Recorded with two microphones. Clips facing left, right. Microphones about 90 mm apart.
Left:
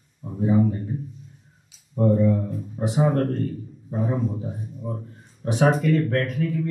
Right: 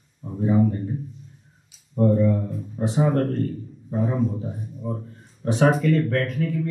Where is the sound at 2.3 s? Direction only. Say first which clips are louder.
Even; centre (ahead or behind).